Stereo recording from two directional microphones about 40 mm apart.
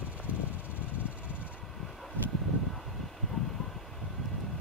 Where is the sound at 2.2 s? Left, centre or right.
Left.